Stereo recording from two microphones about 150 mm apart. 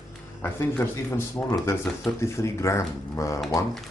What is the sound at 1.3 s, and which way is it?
Speech, 20° left (ahead or behind).